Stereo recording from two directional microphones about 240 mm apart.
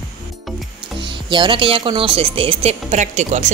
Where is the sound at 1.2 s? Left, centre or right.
Centre.